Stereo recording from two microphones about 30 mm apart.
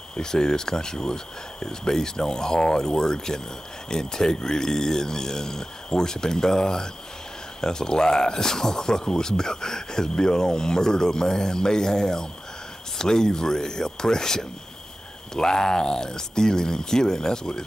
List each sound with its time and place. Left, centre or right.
0.1 s speech: left